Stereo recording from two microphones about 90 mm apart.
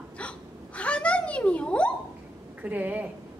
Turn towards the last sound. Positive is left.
turn(degrees=-20)  # may be behind; listen again after turning